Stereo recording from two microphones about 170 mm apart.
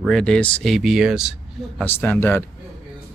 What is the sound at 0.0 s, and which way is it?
Speech, 5° left (ahead or behind).